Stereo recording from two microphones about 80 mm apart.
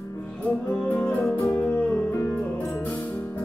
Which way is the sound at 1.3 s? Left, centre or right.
Left.